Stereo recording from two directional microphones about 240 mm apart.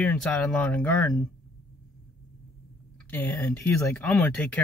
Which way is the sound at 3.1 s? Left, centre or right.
Centre.